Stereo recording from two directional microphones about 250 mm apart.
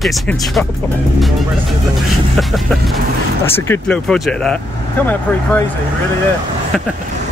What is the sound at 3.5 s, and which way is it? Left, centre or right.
Speech, centre.